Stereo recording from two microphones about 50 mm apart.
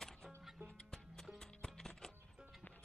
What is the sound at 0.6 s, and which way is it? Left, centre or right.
Music, right.